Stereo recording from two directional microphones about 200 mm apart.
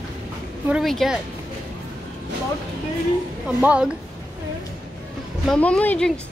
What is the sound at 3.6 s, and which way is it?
Speech, 5° right (ahead or behind).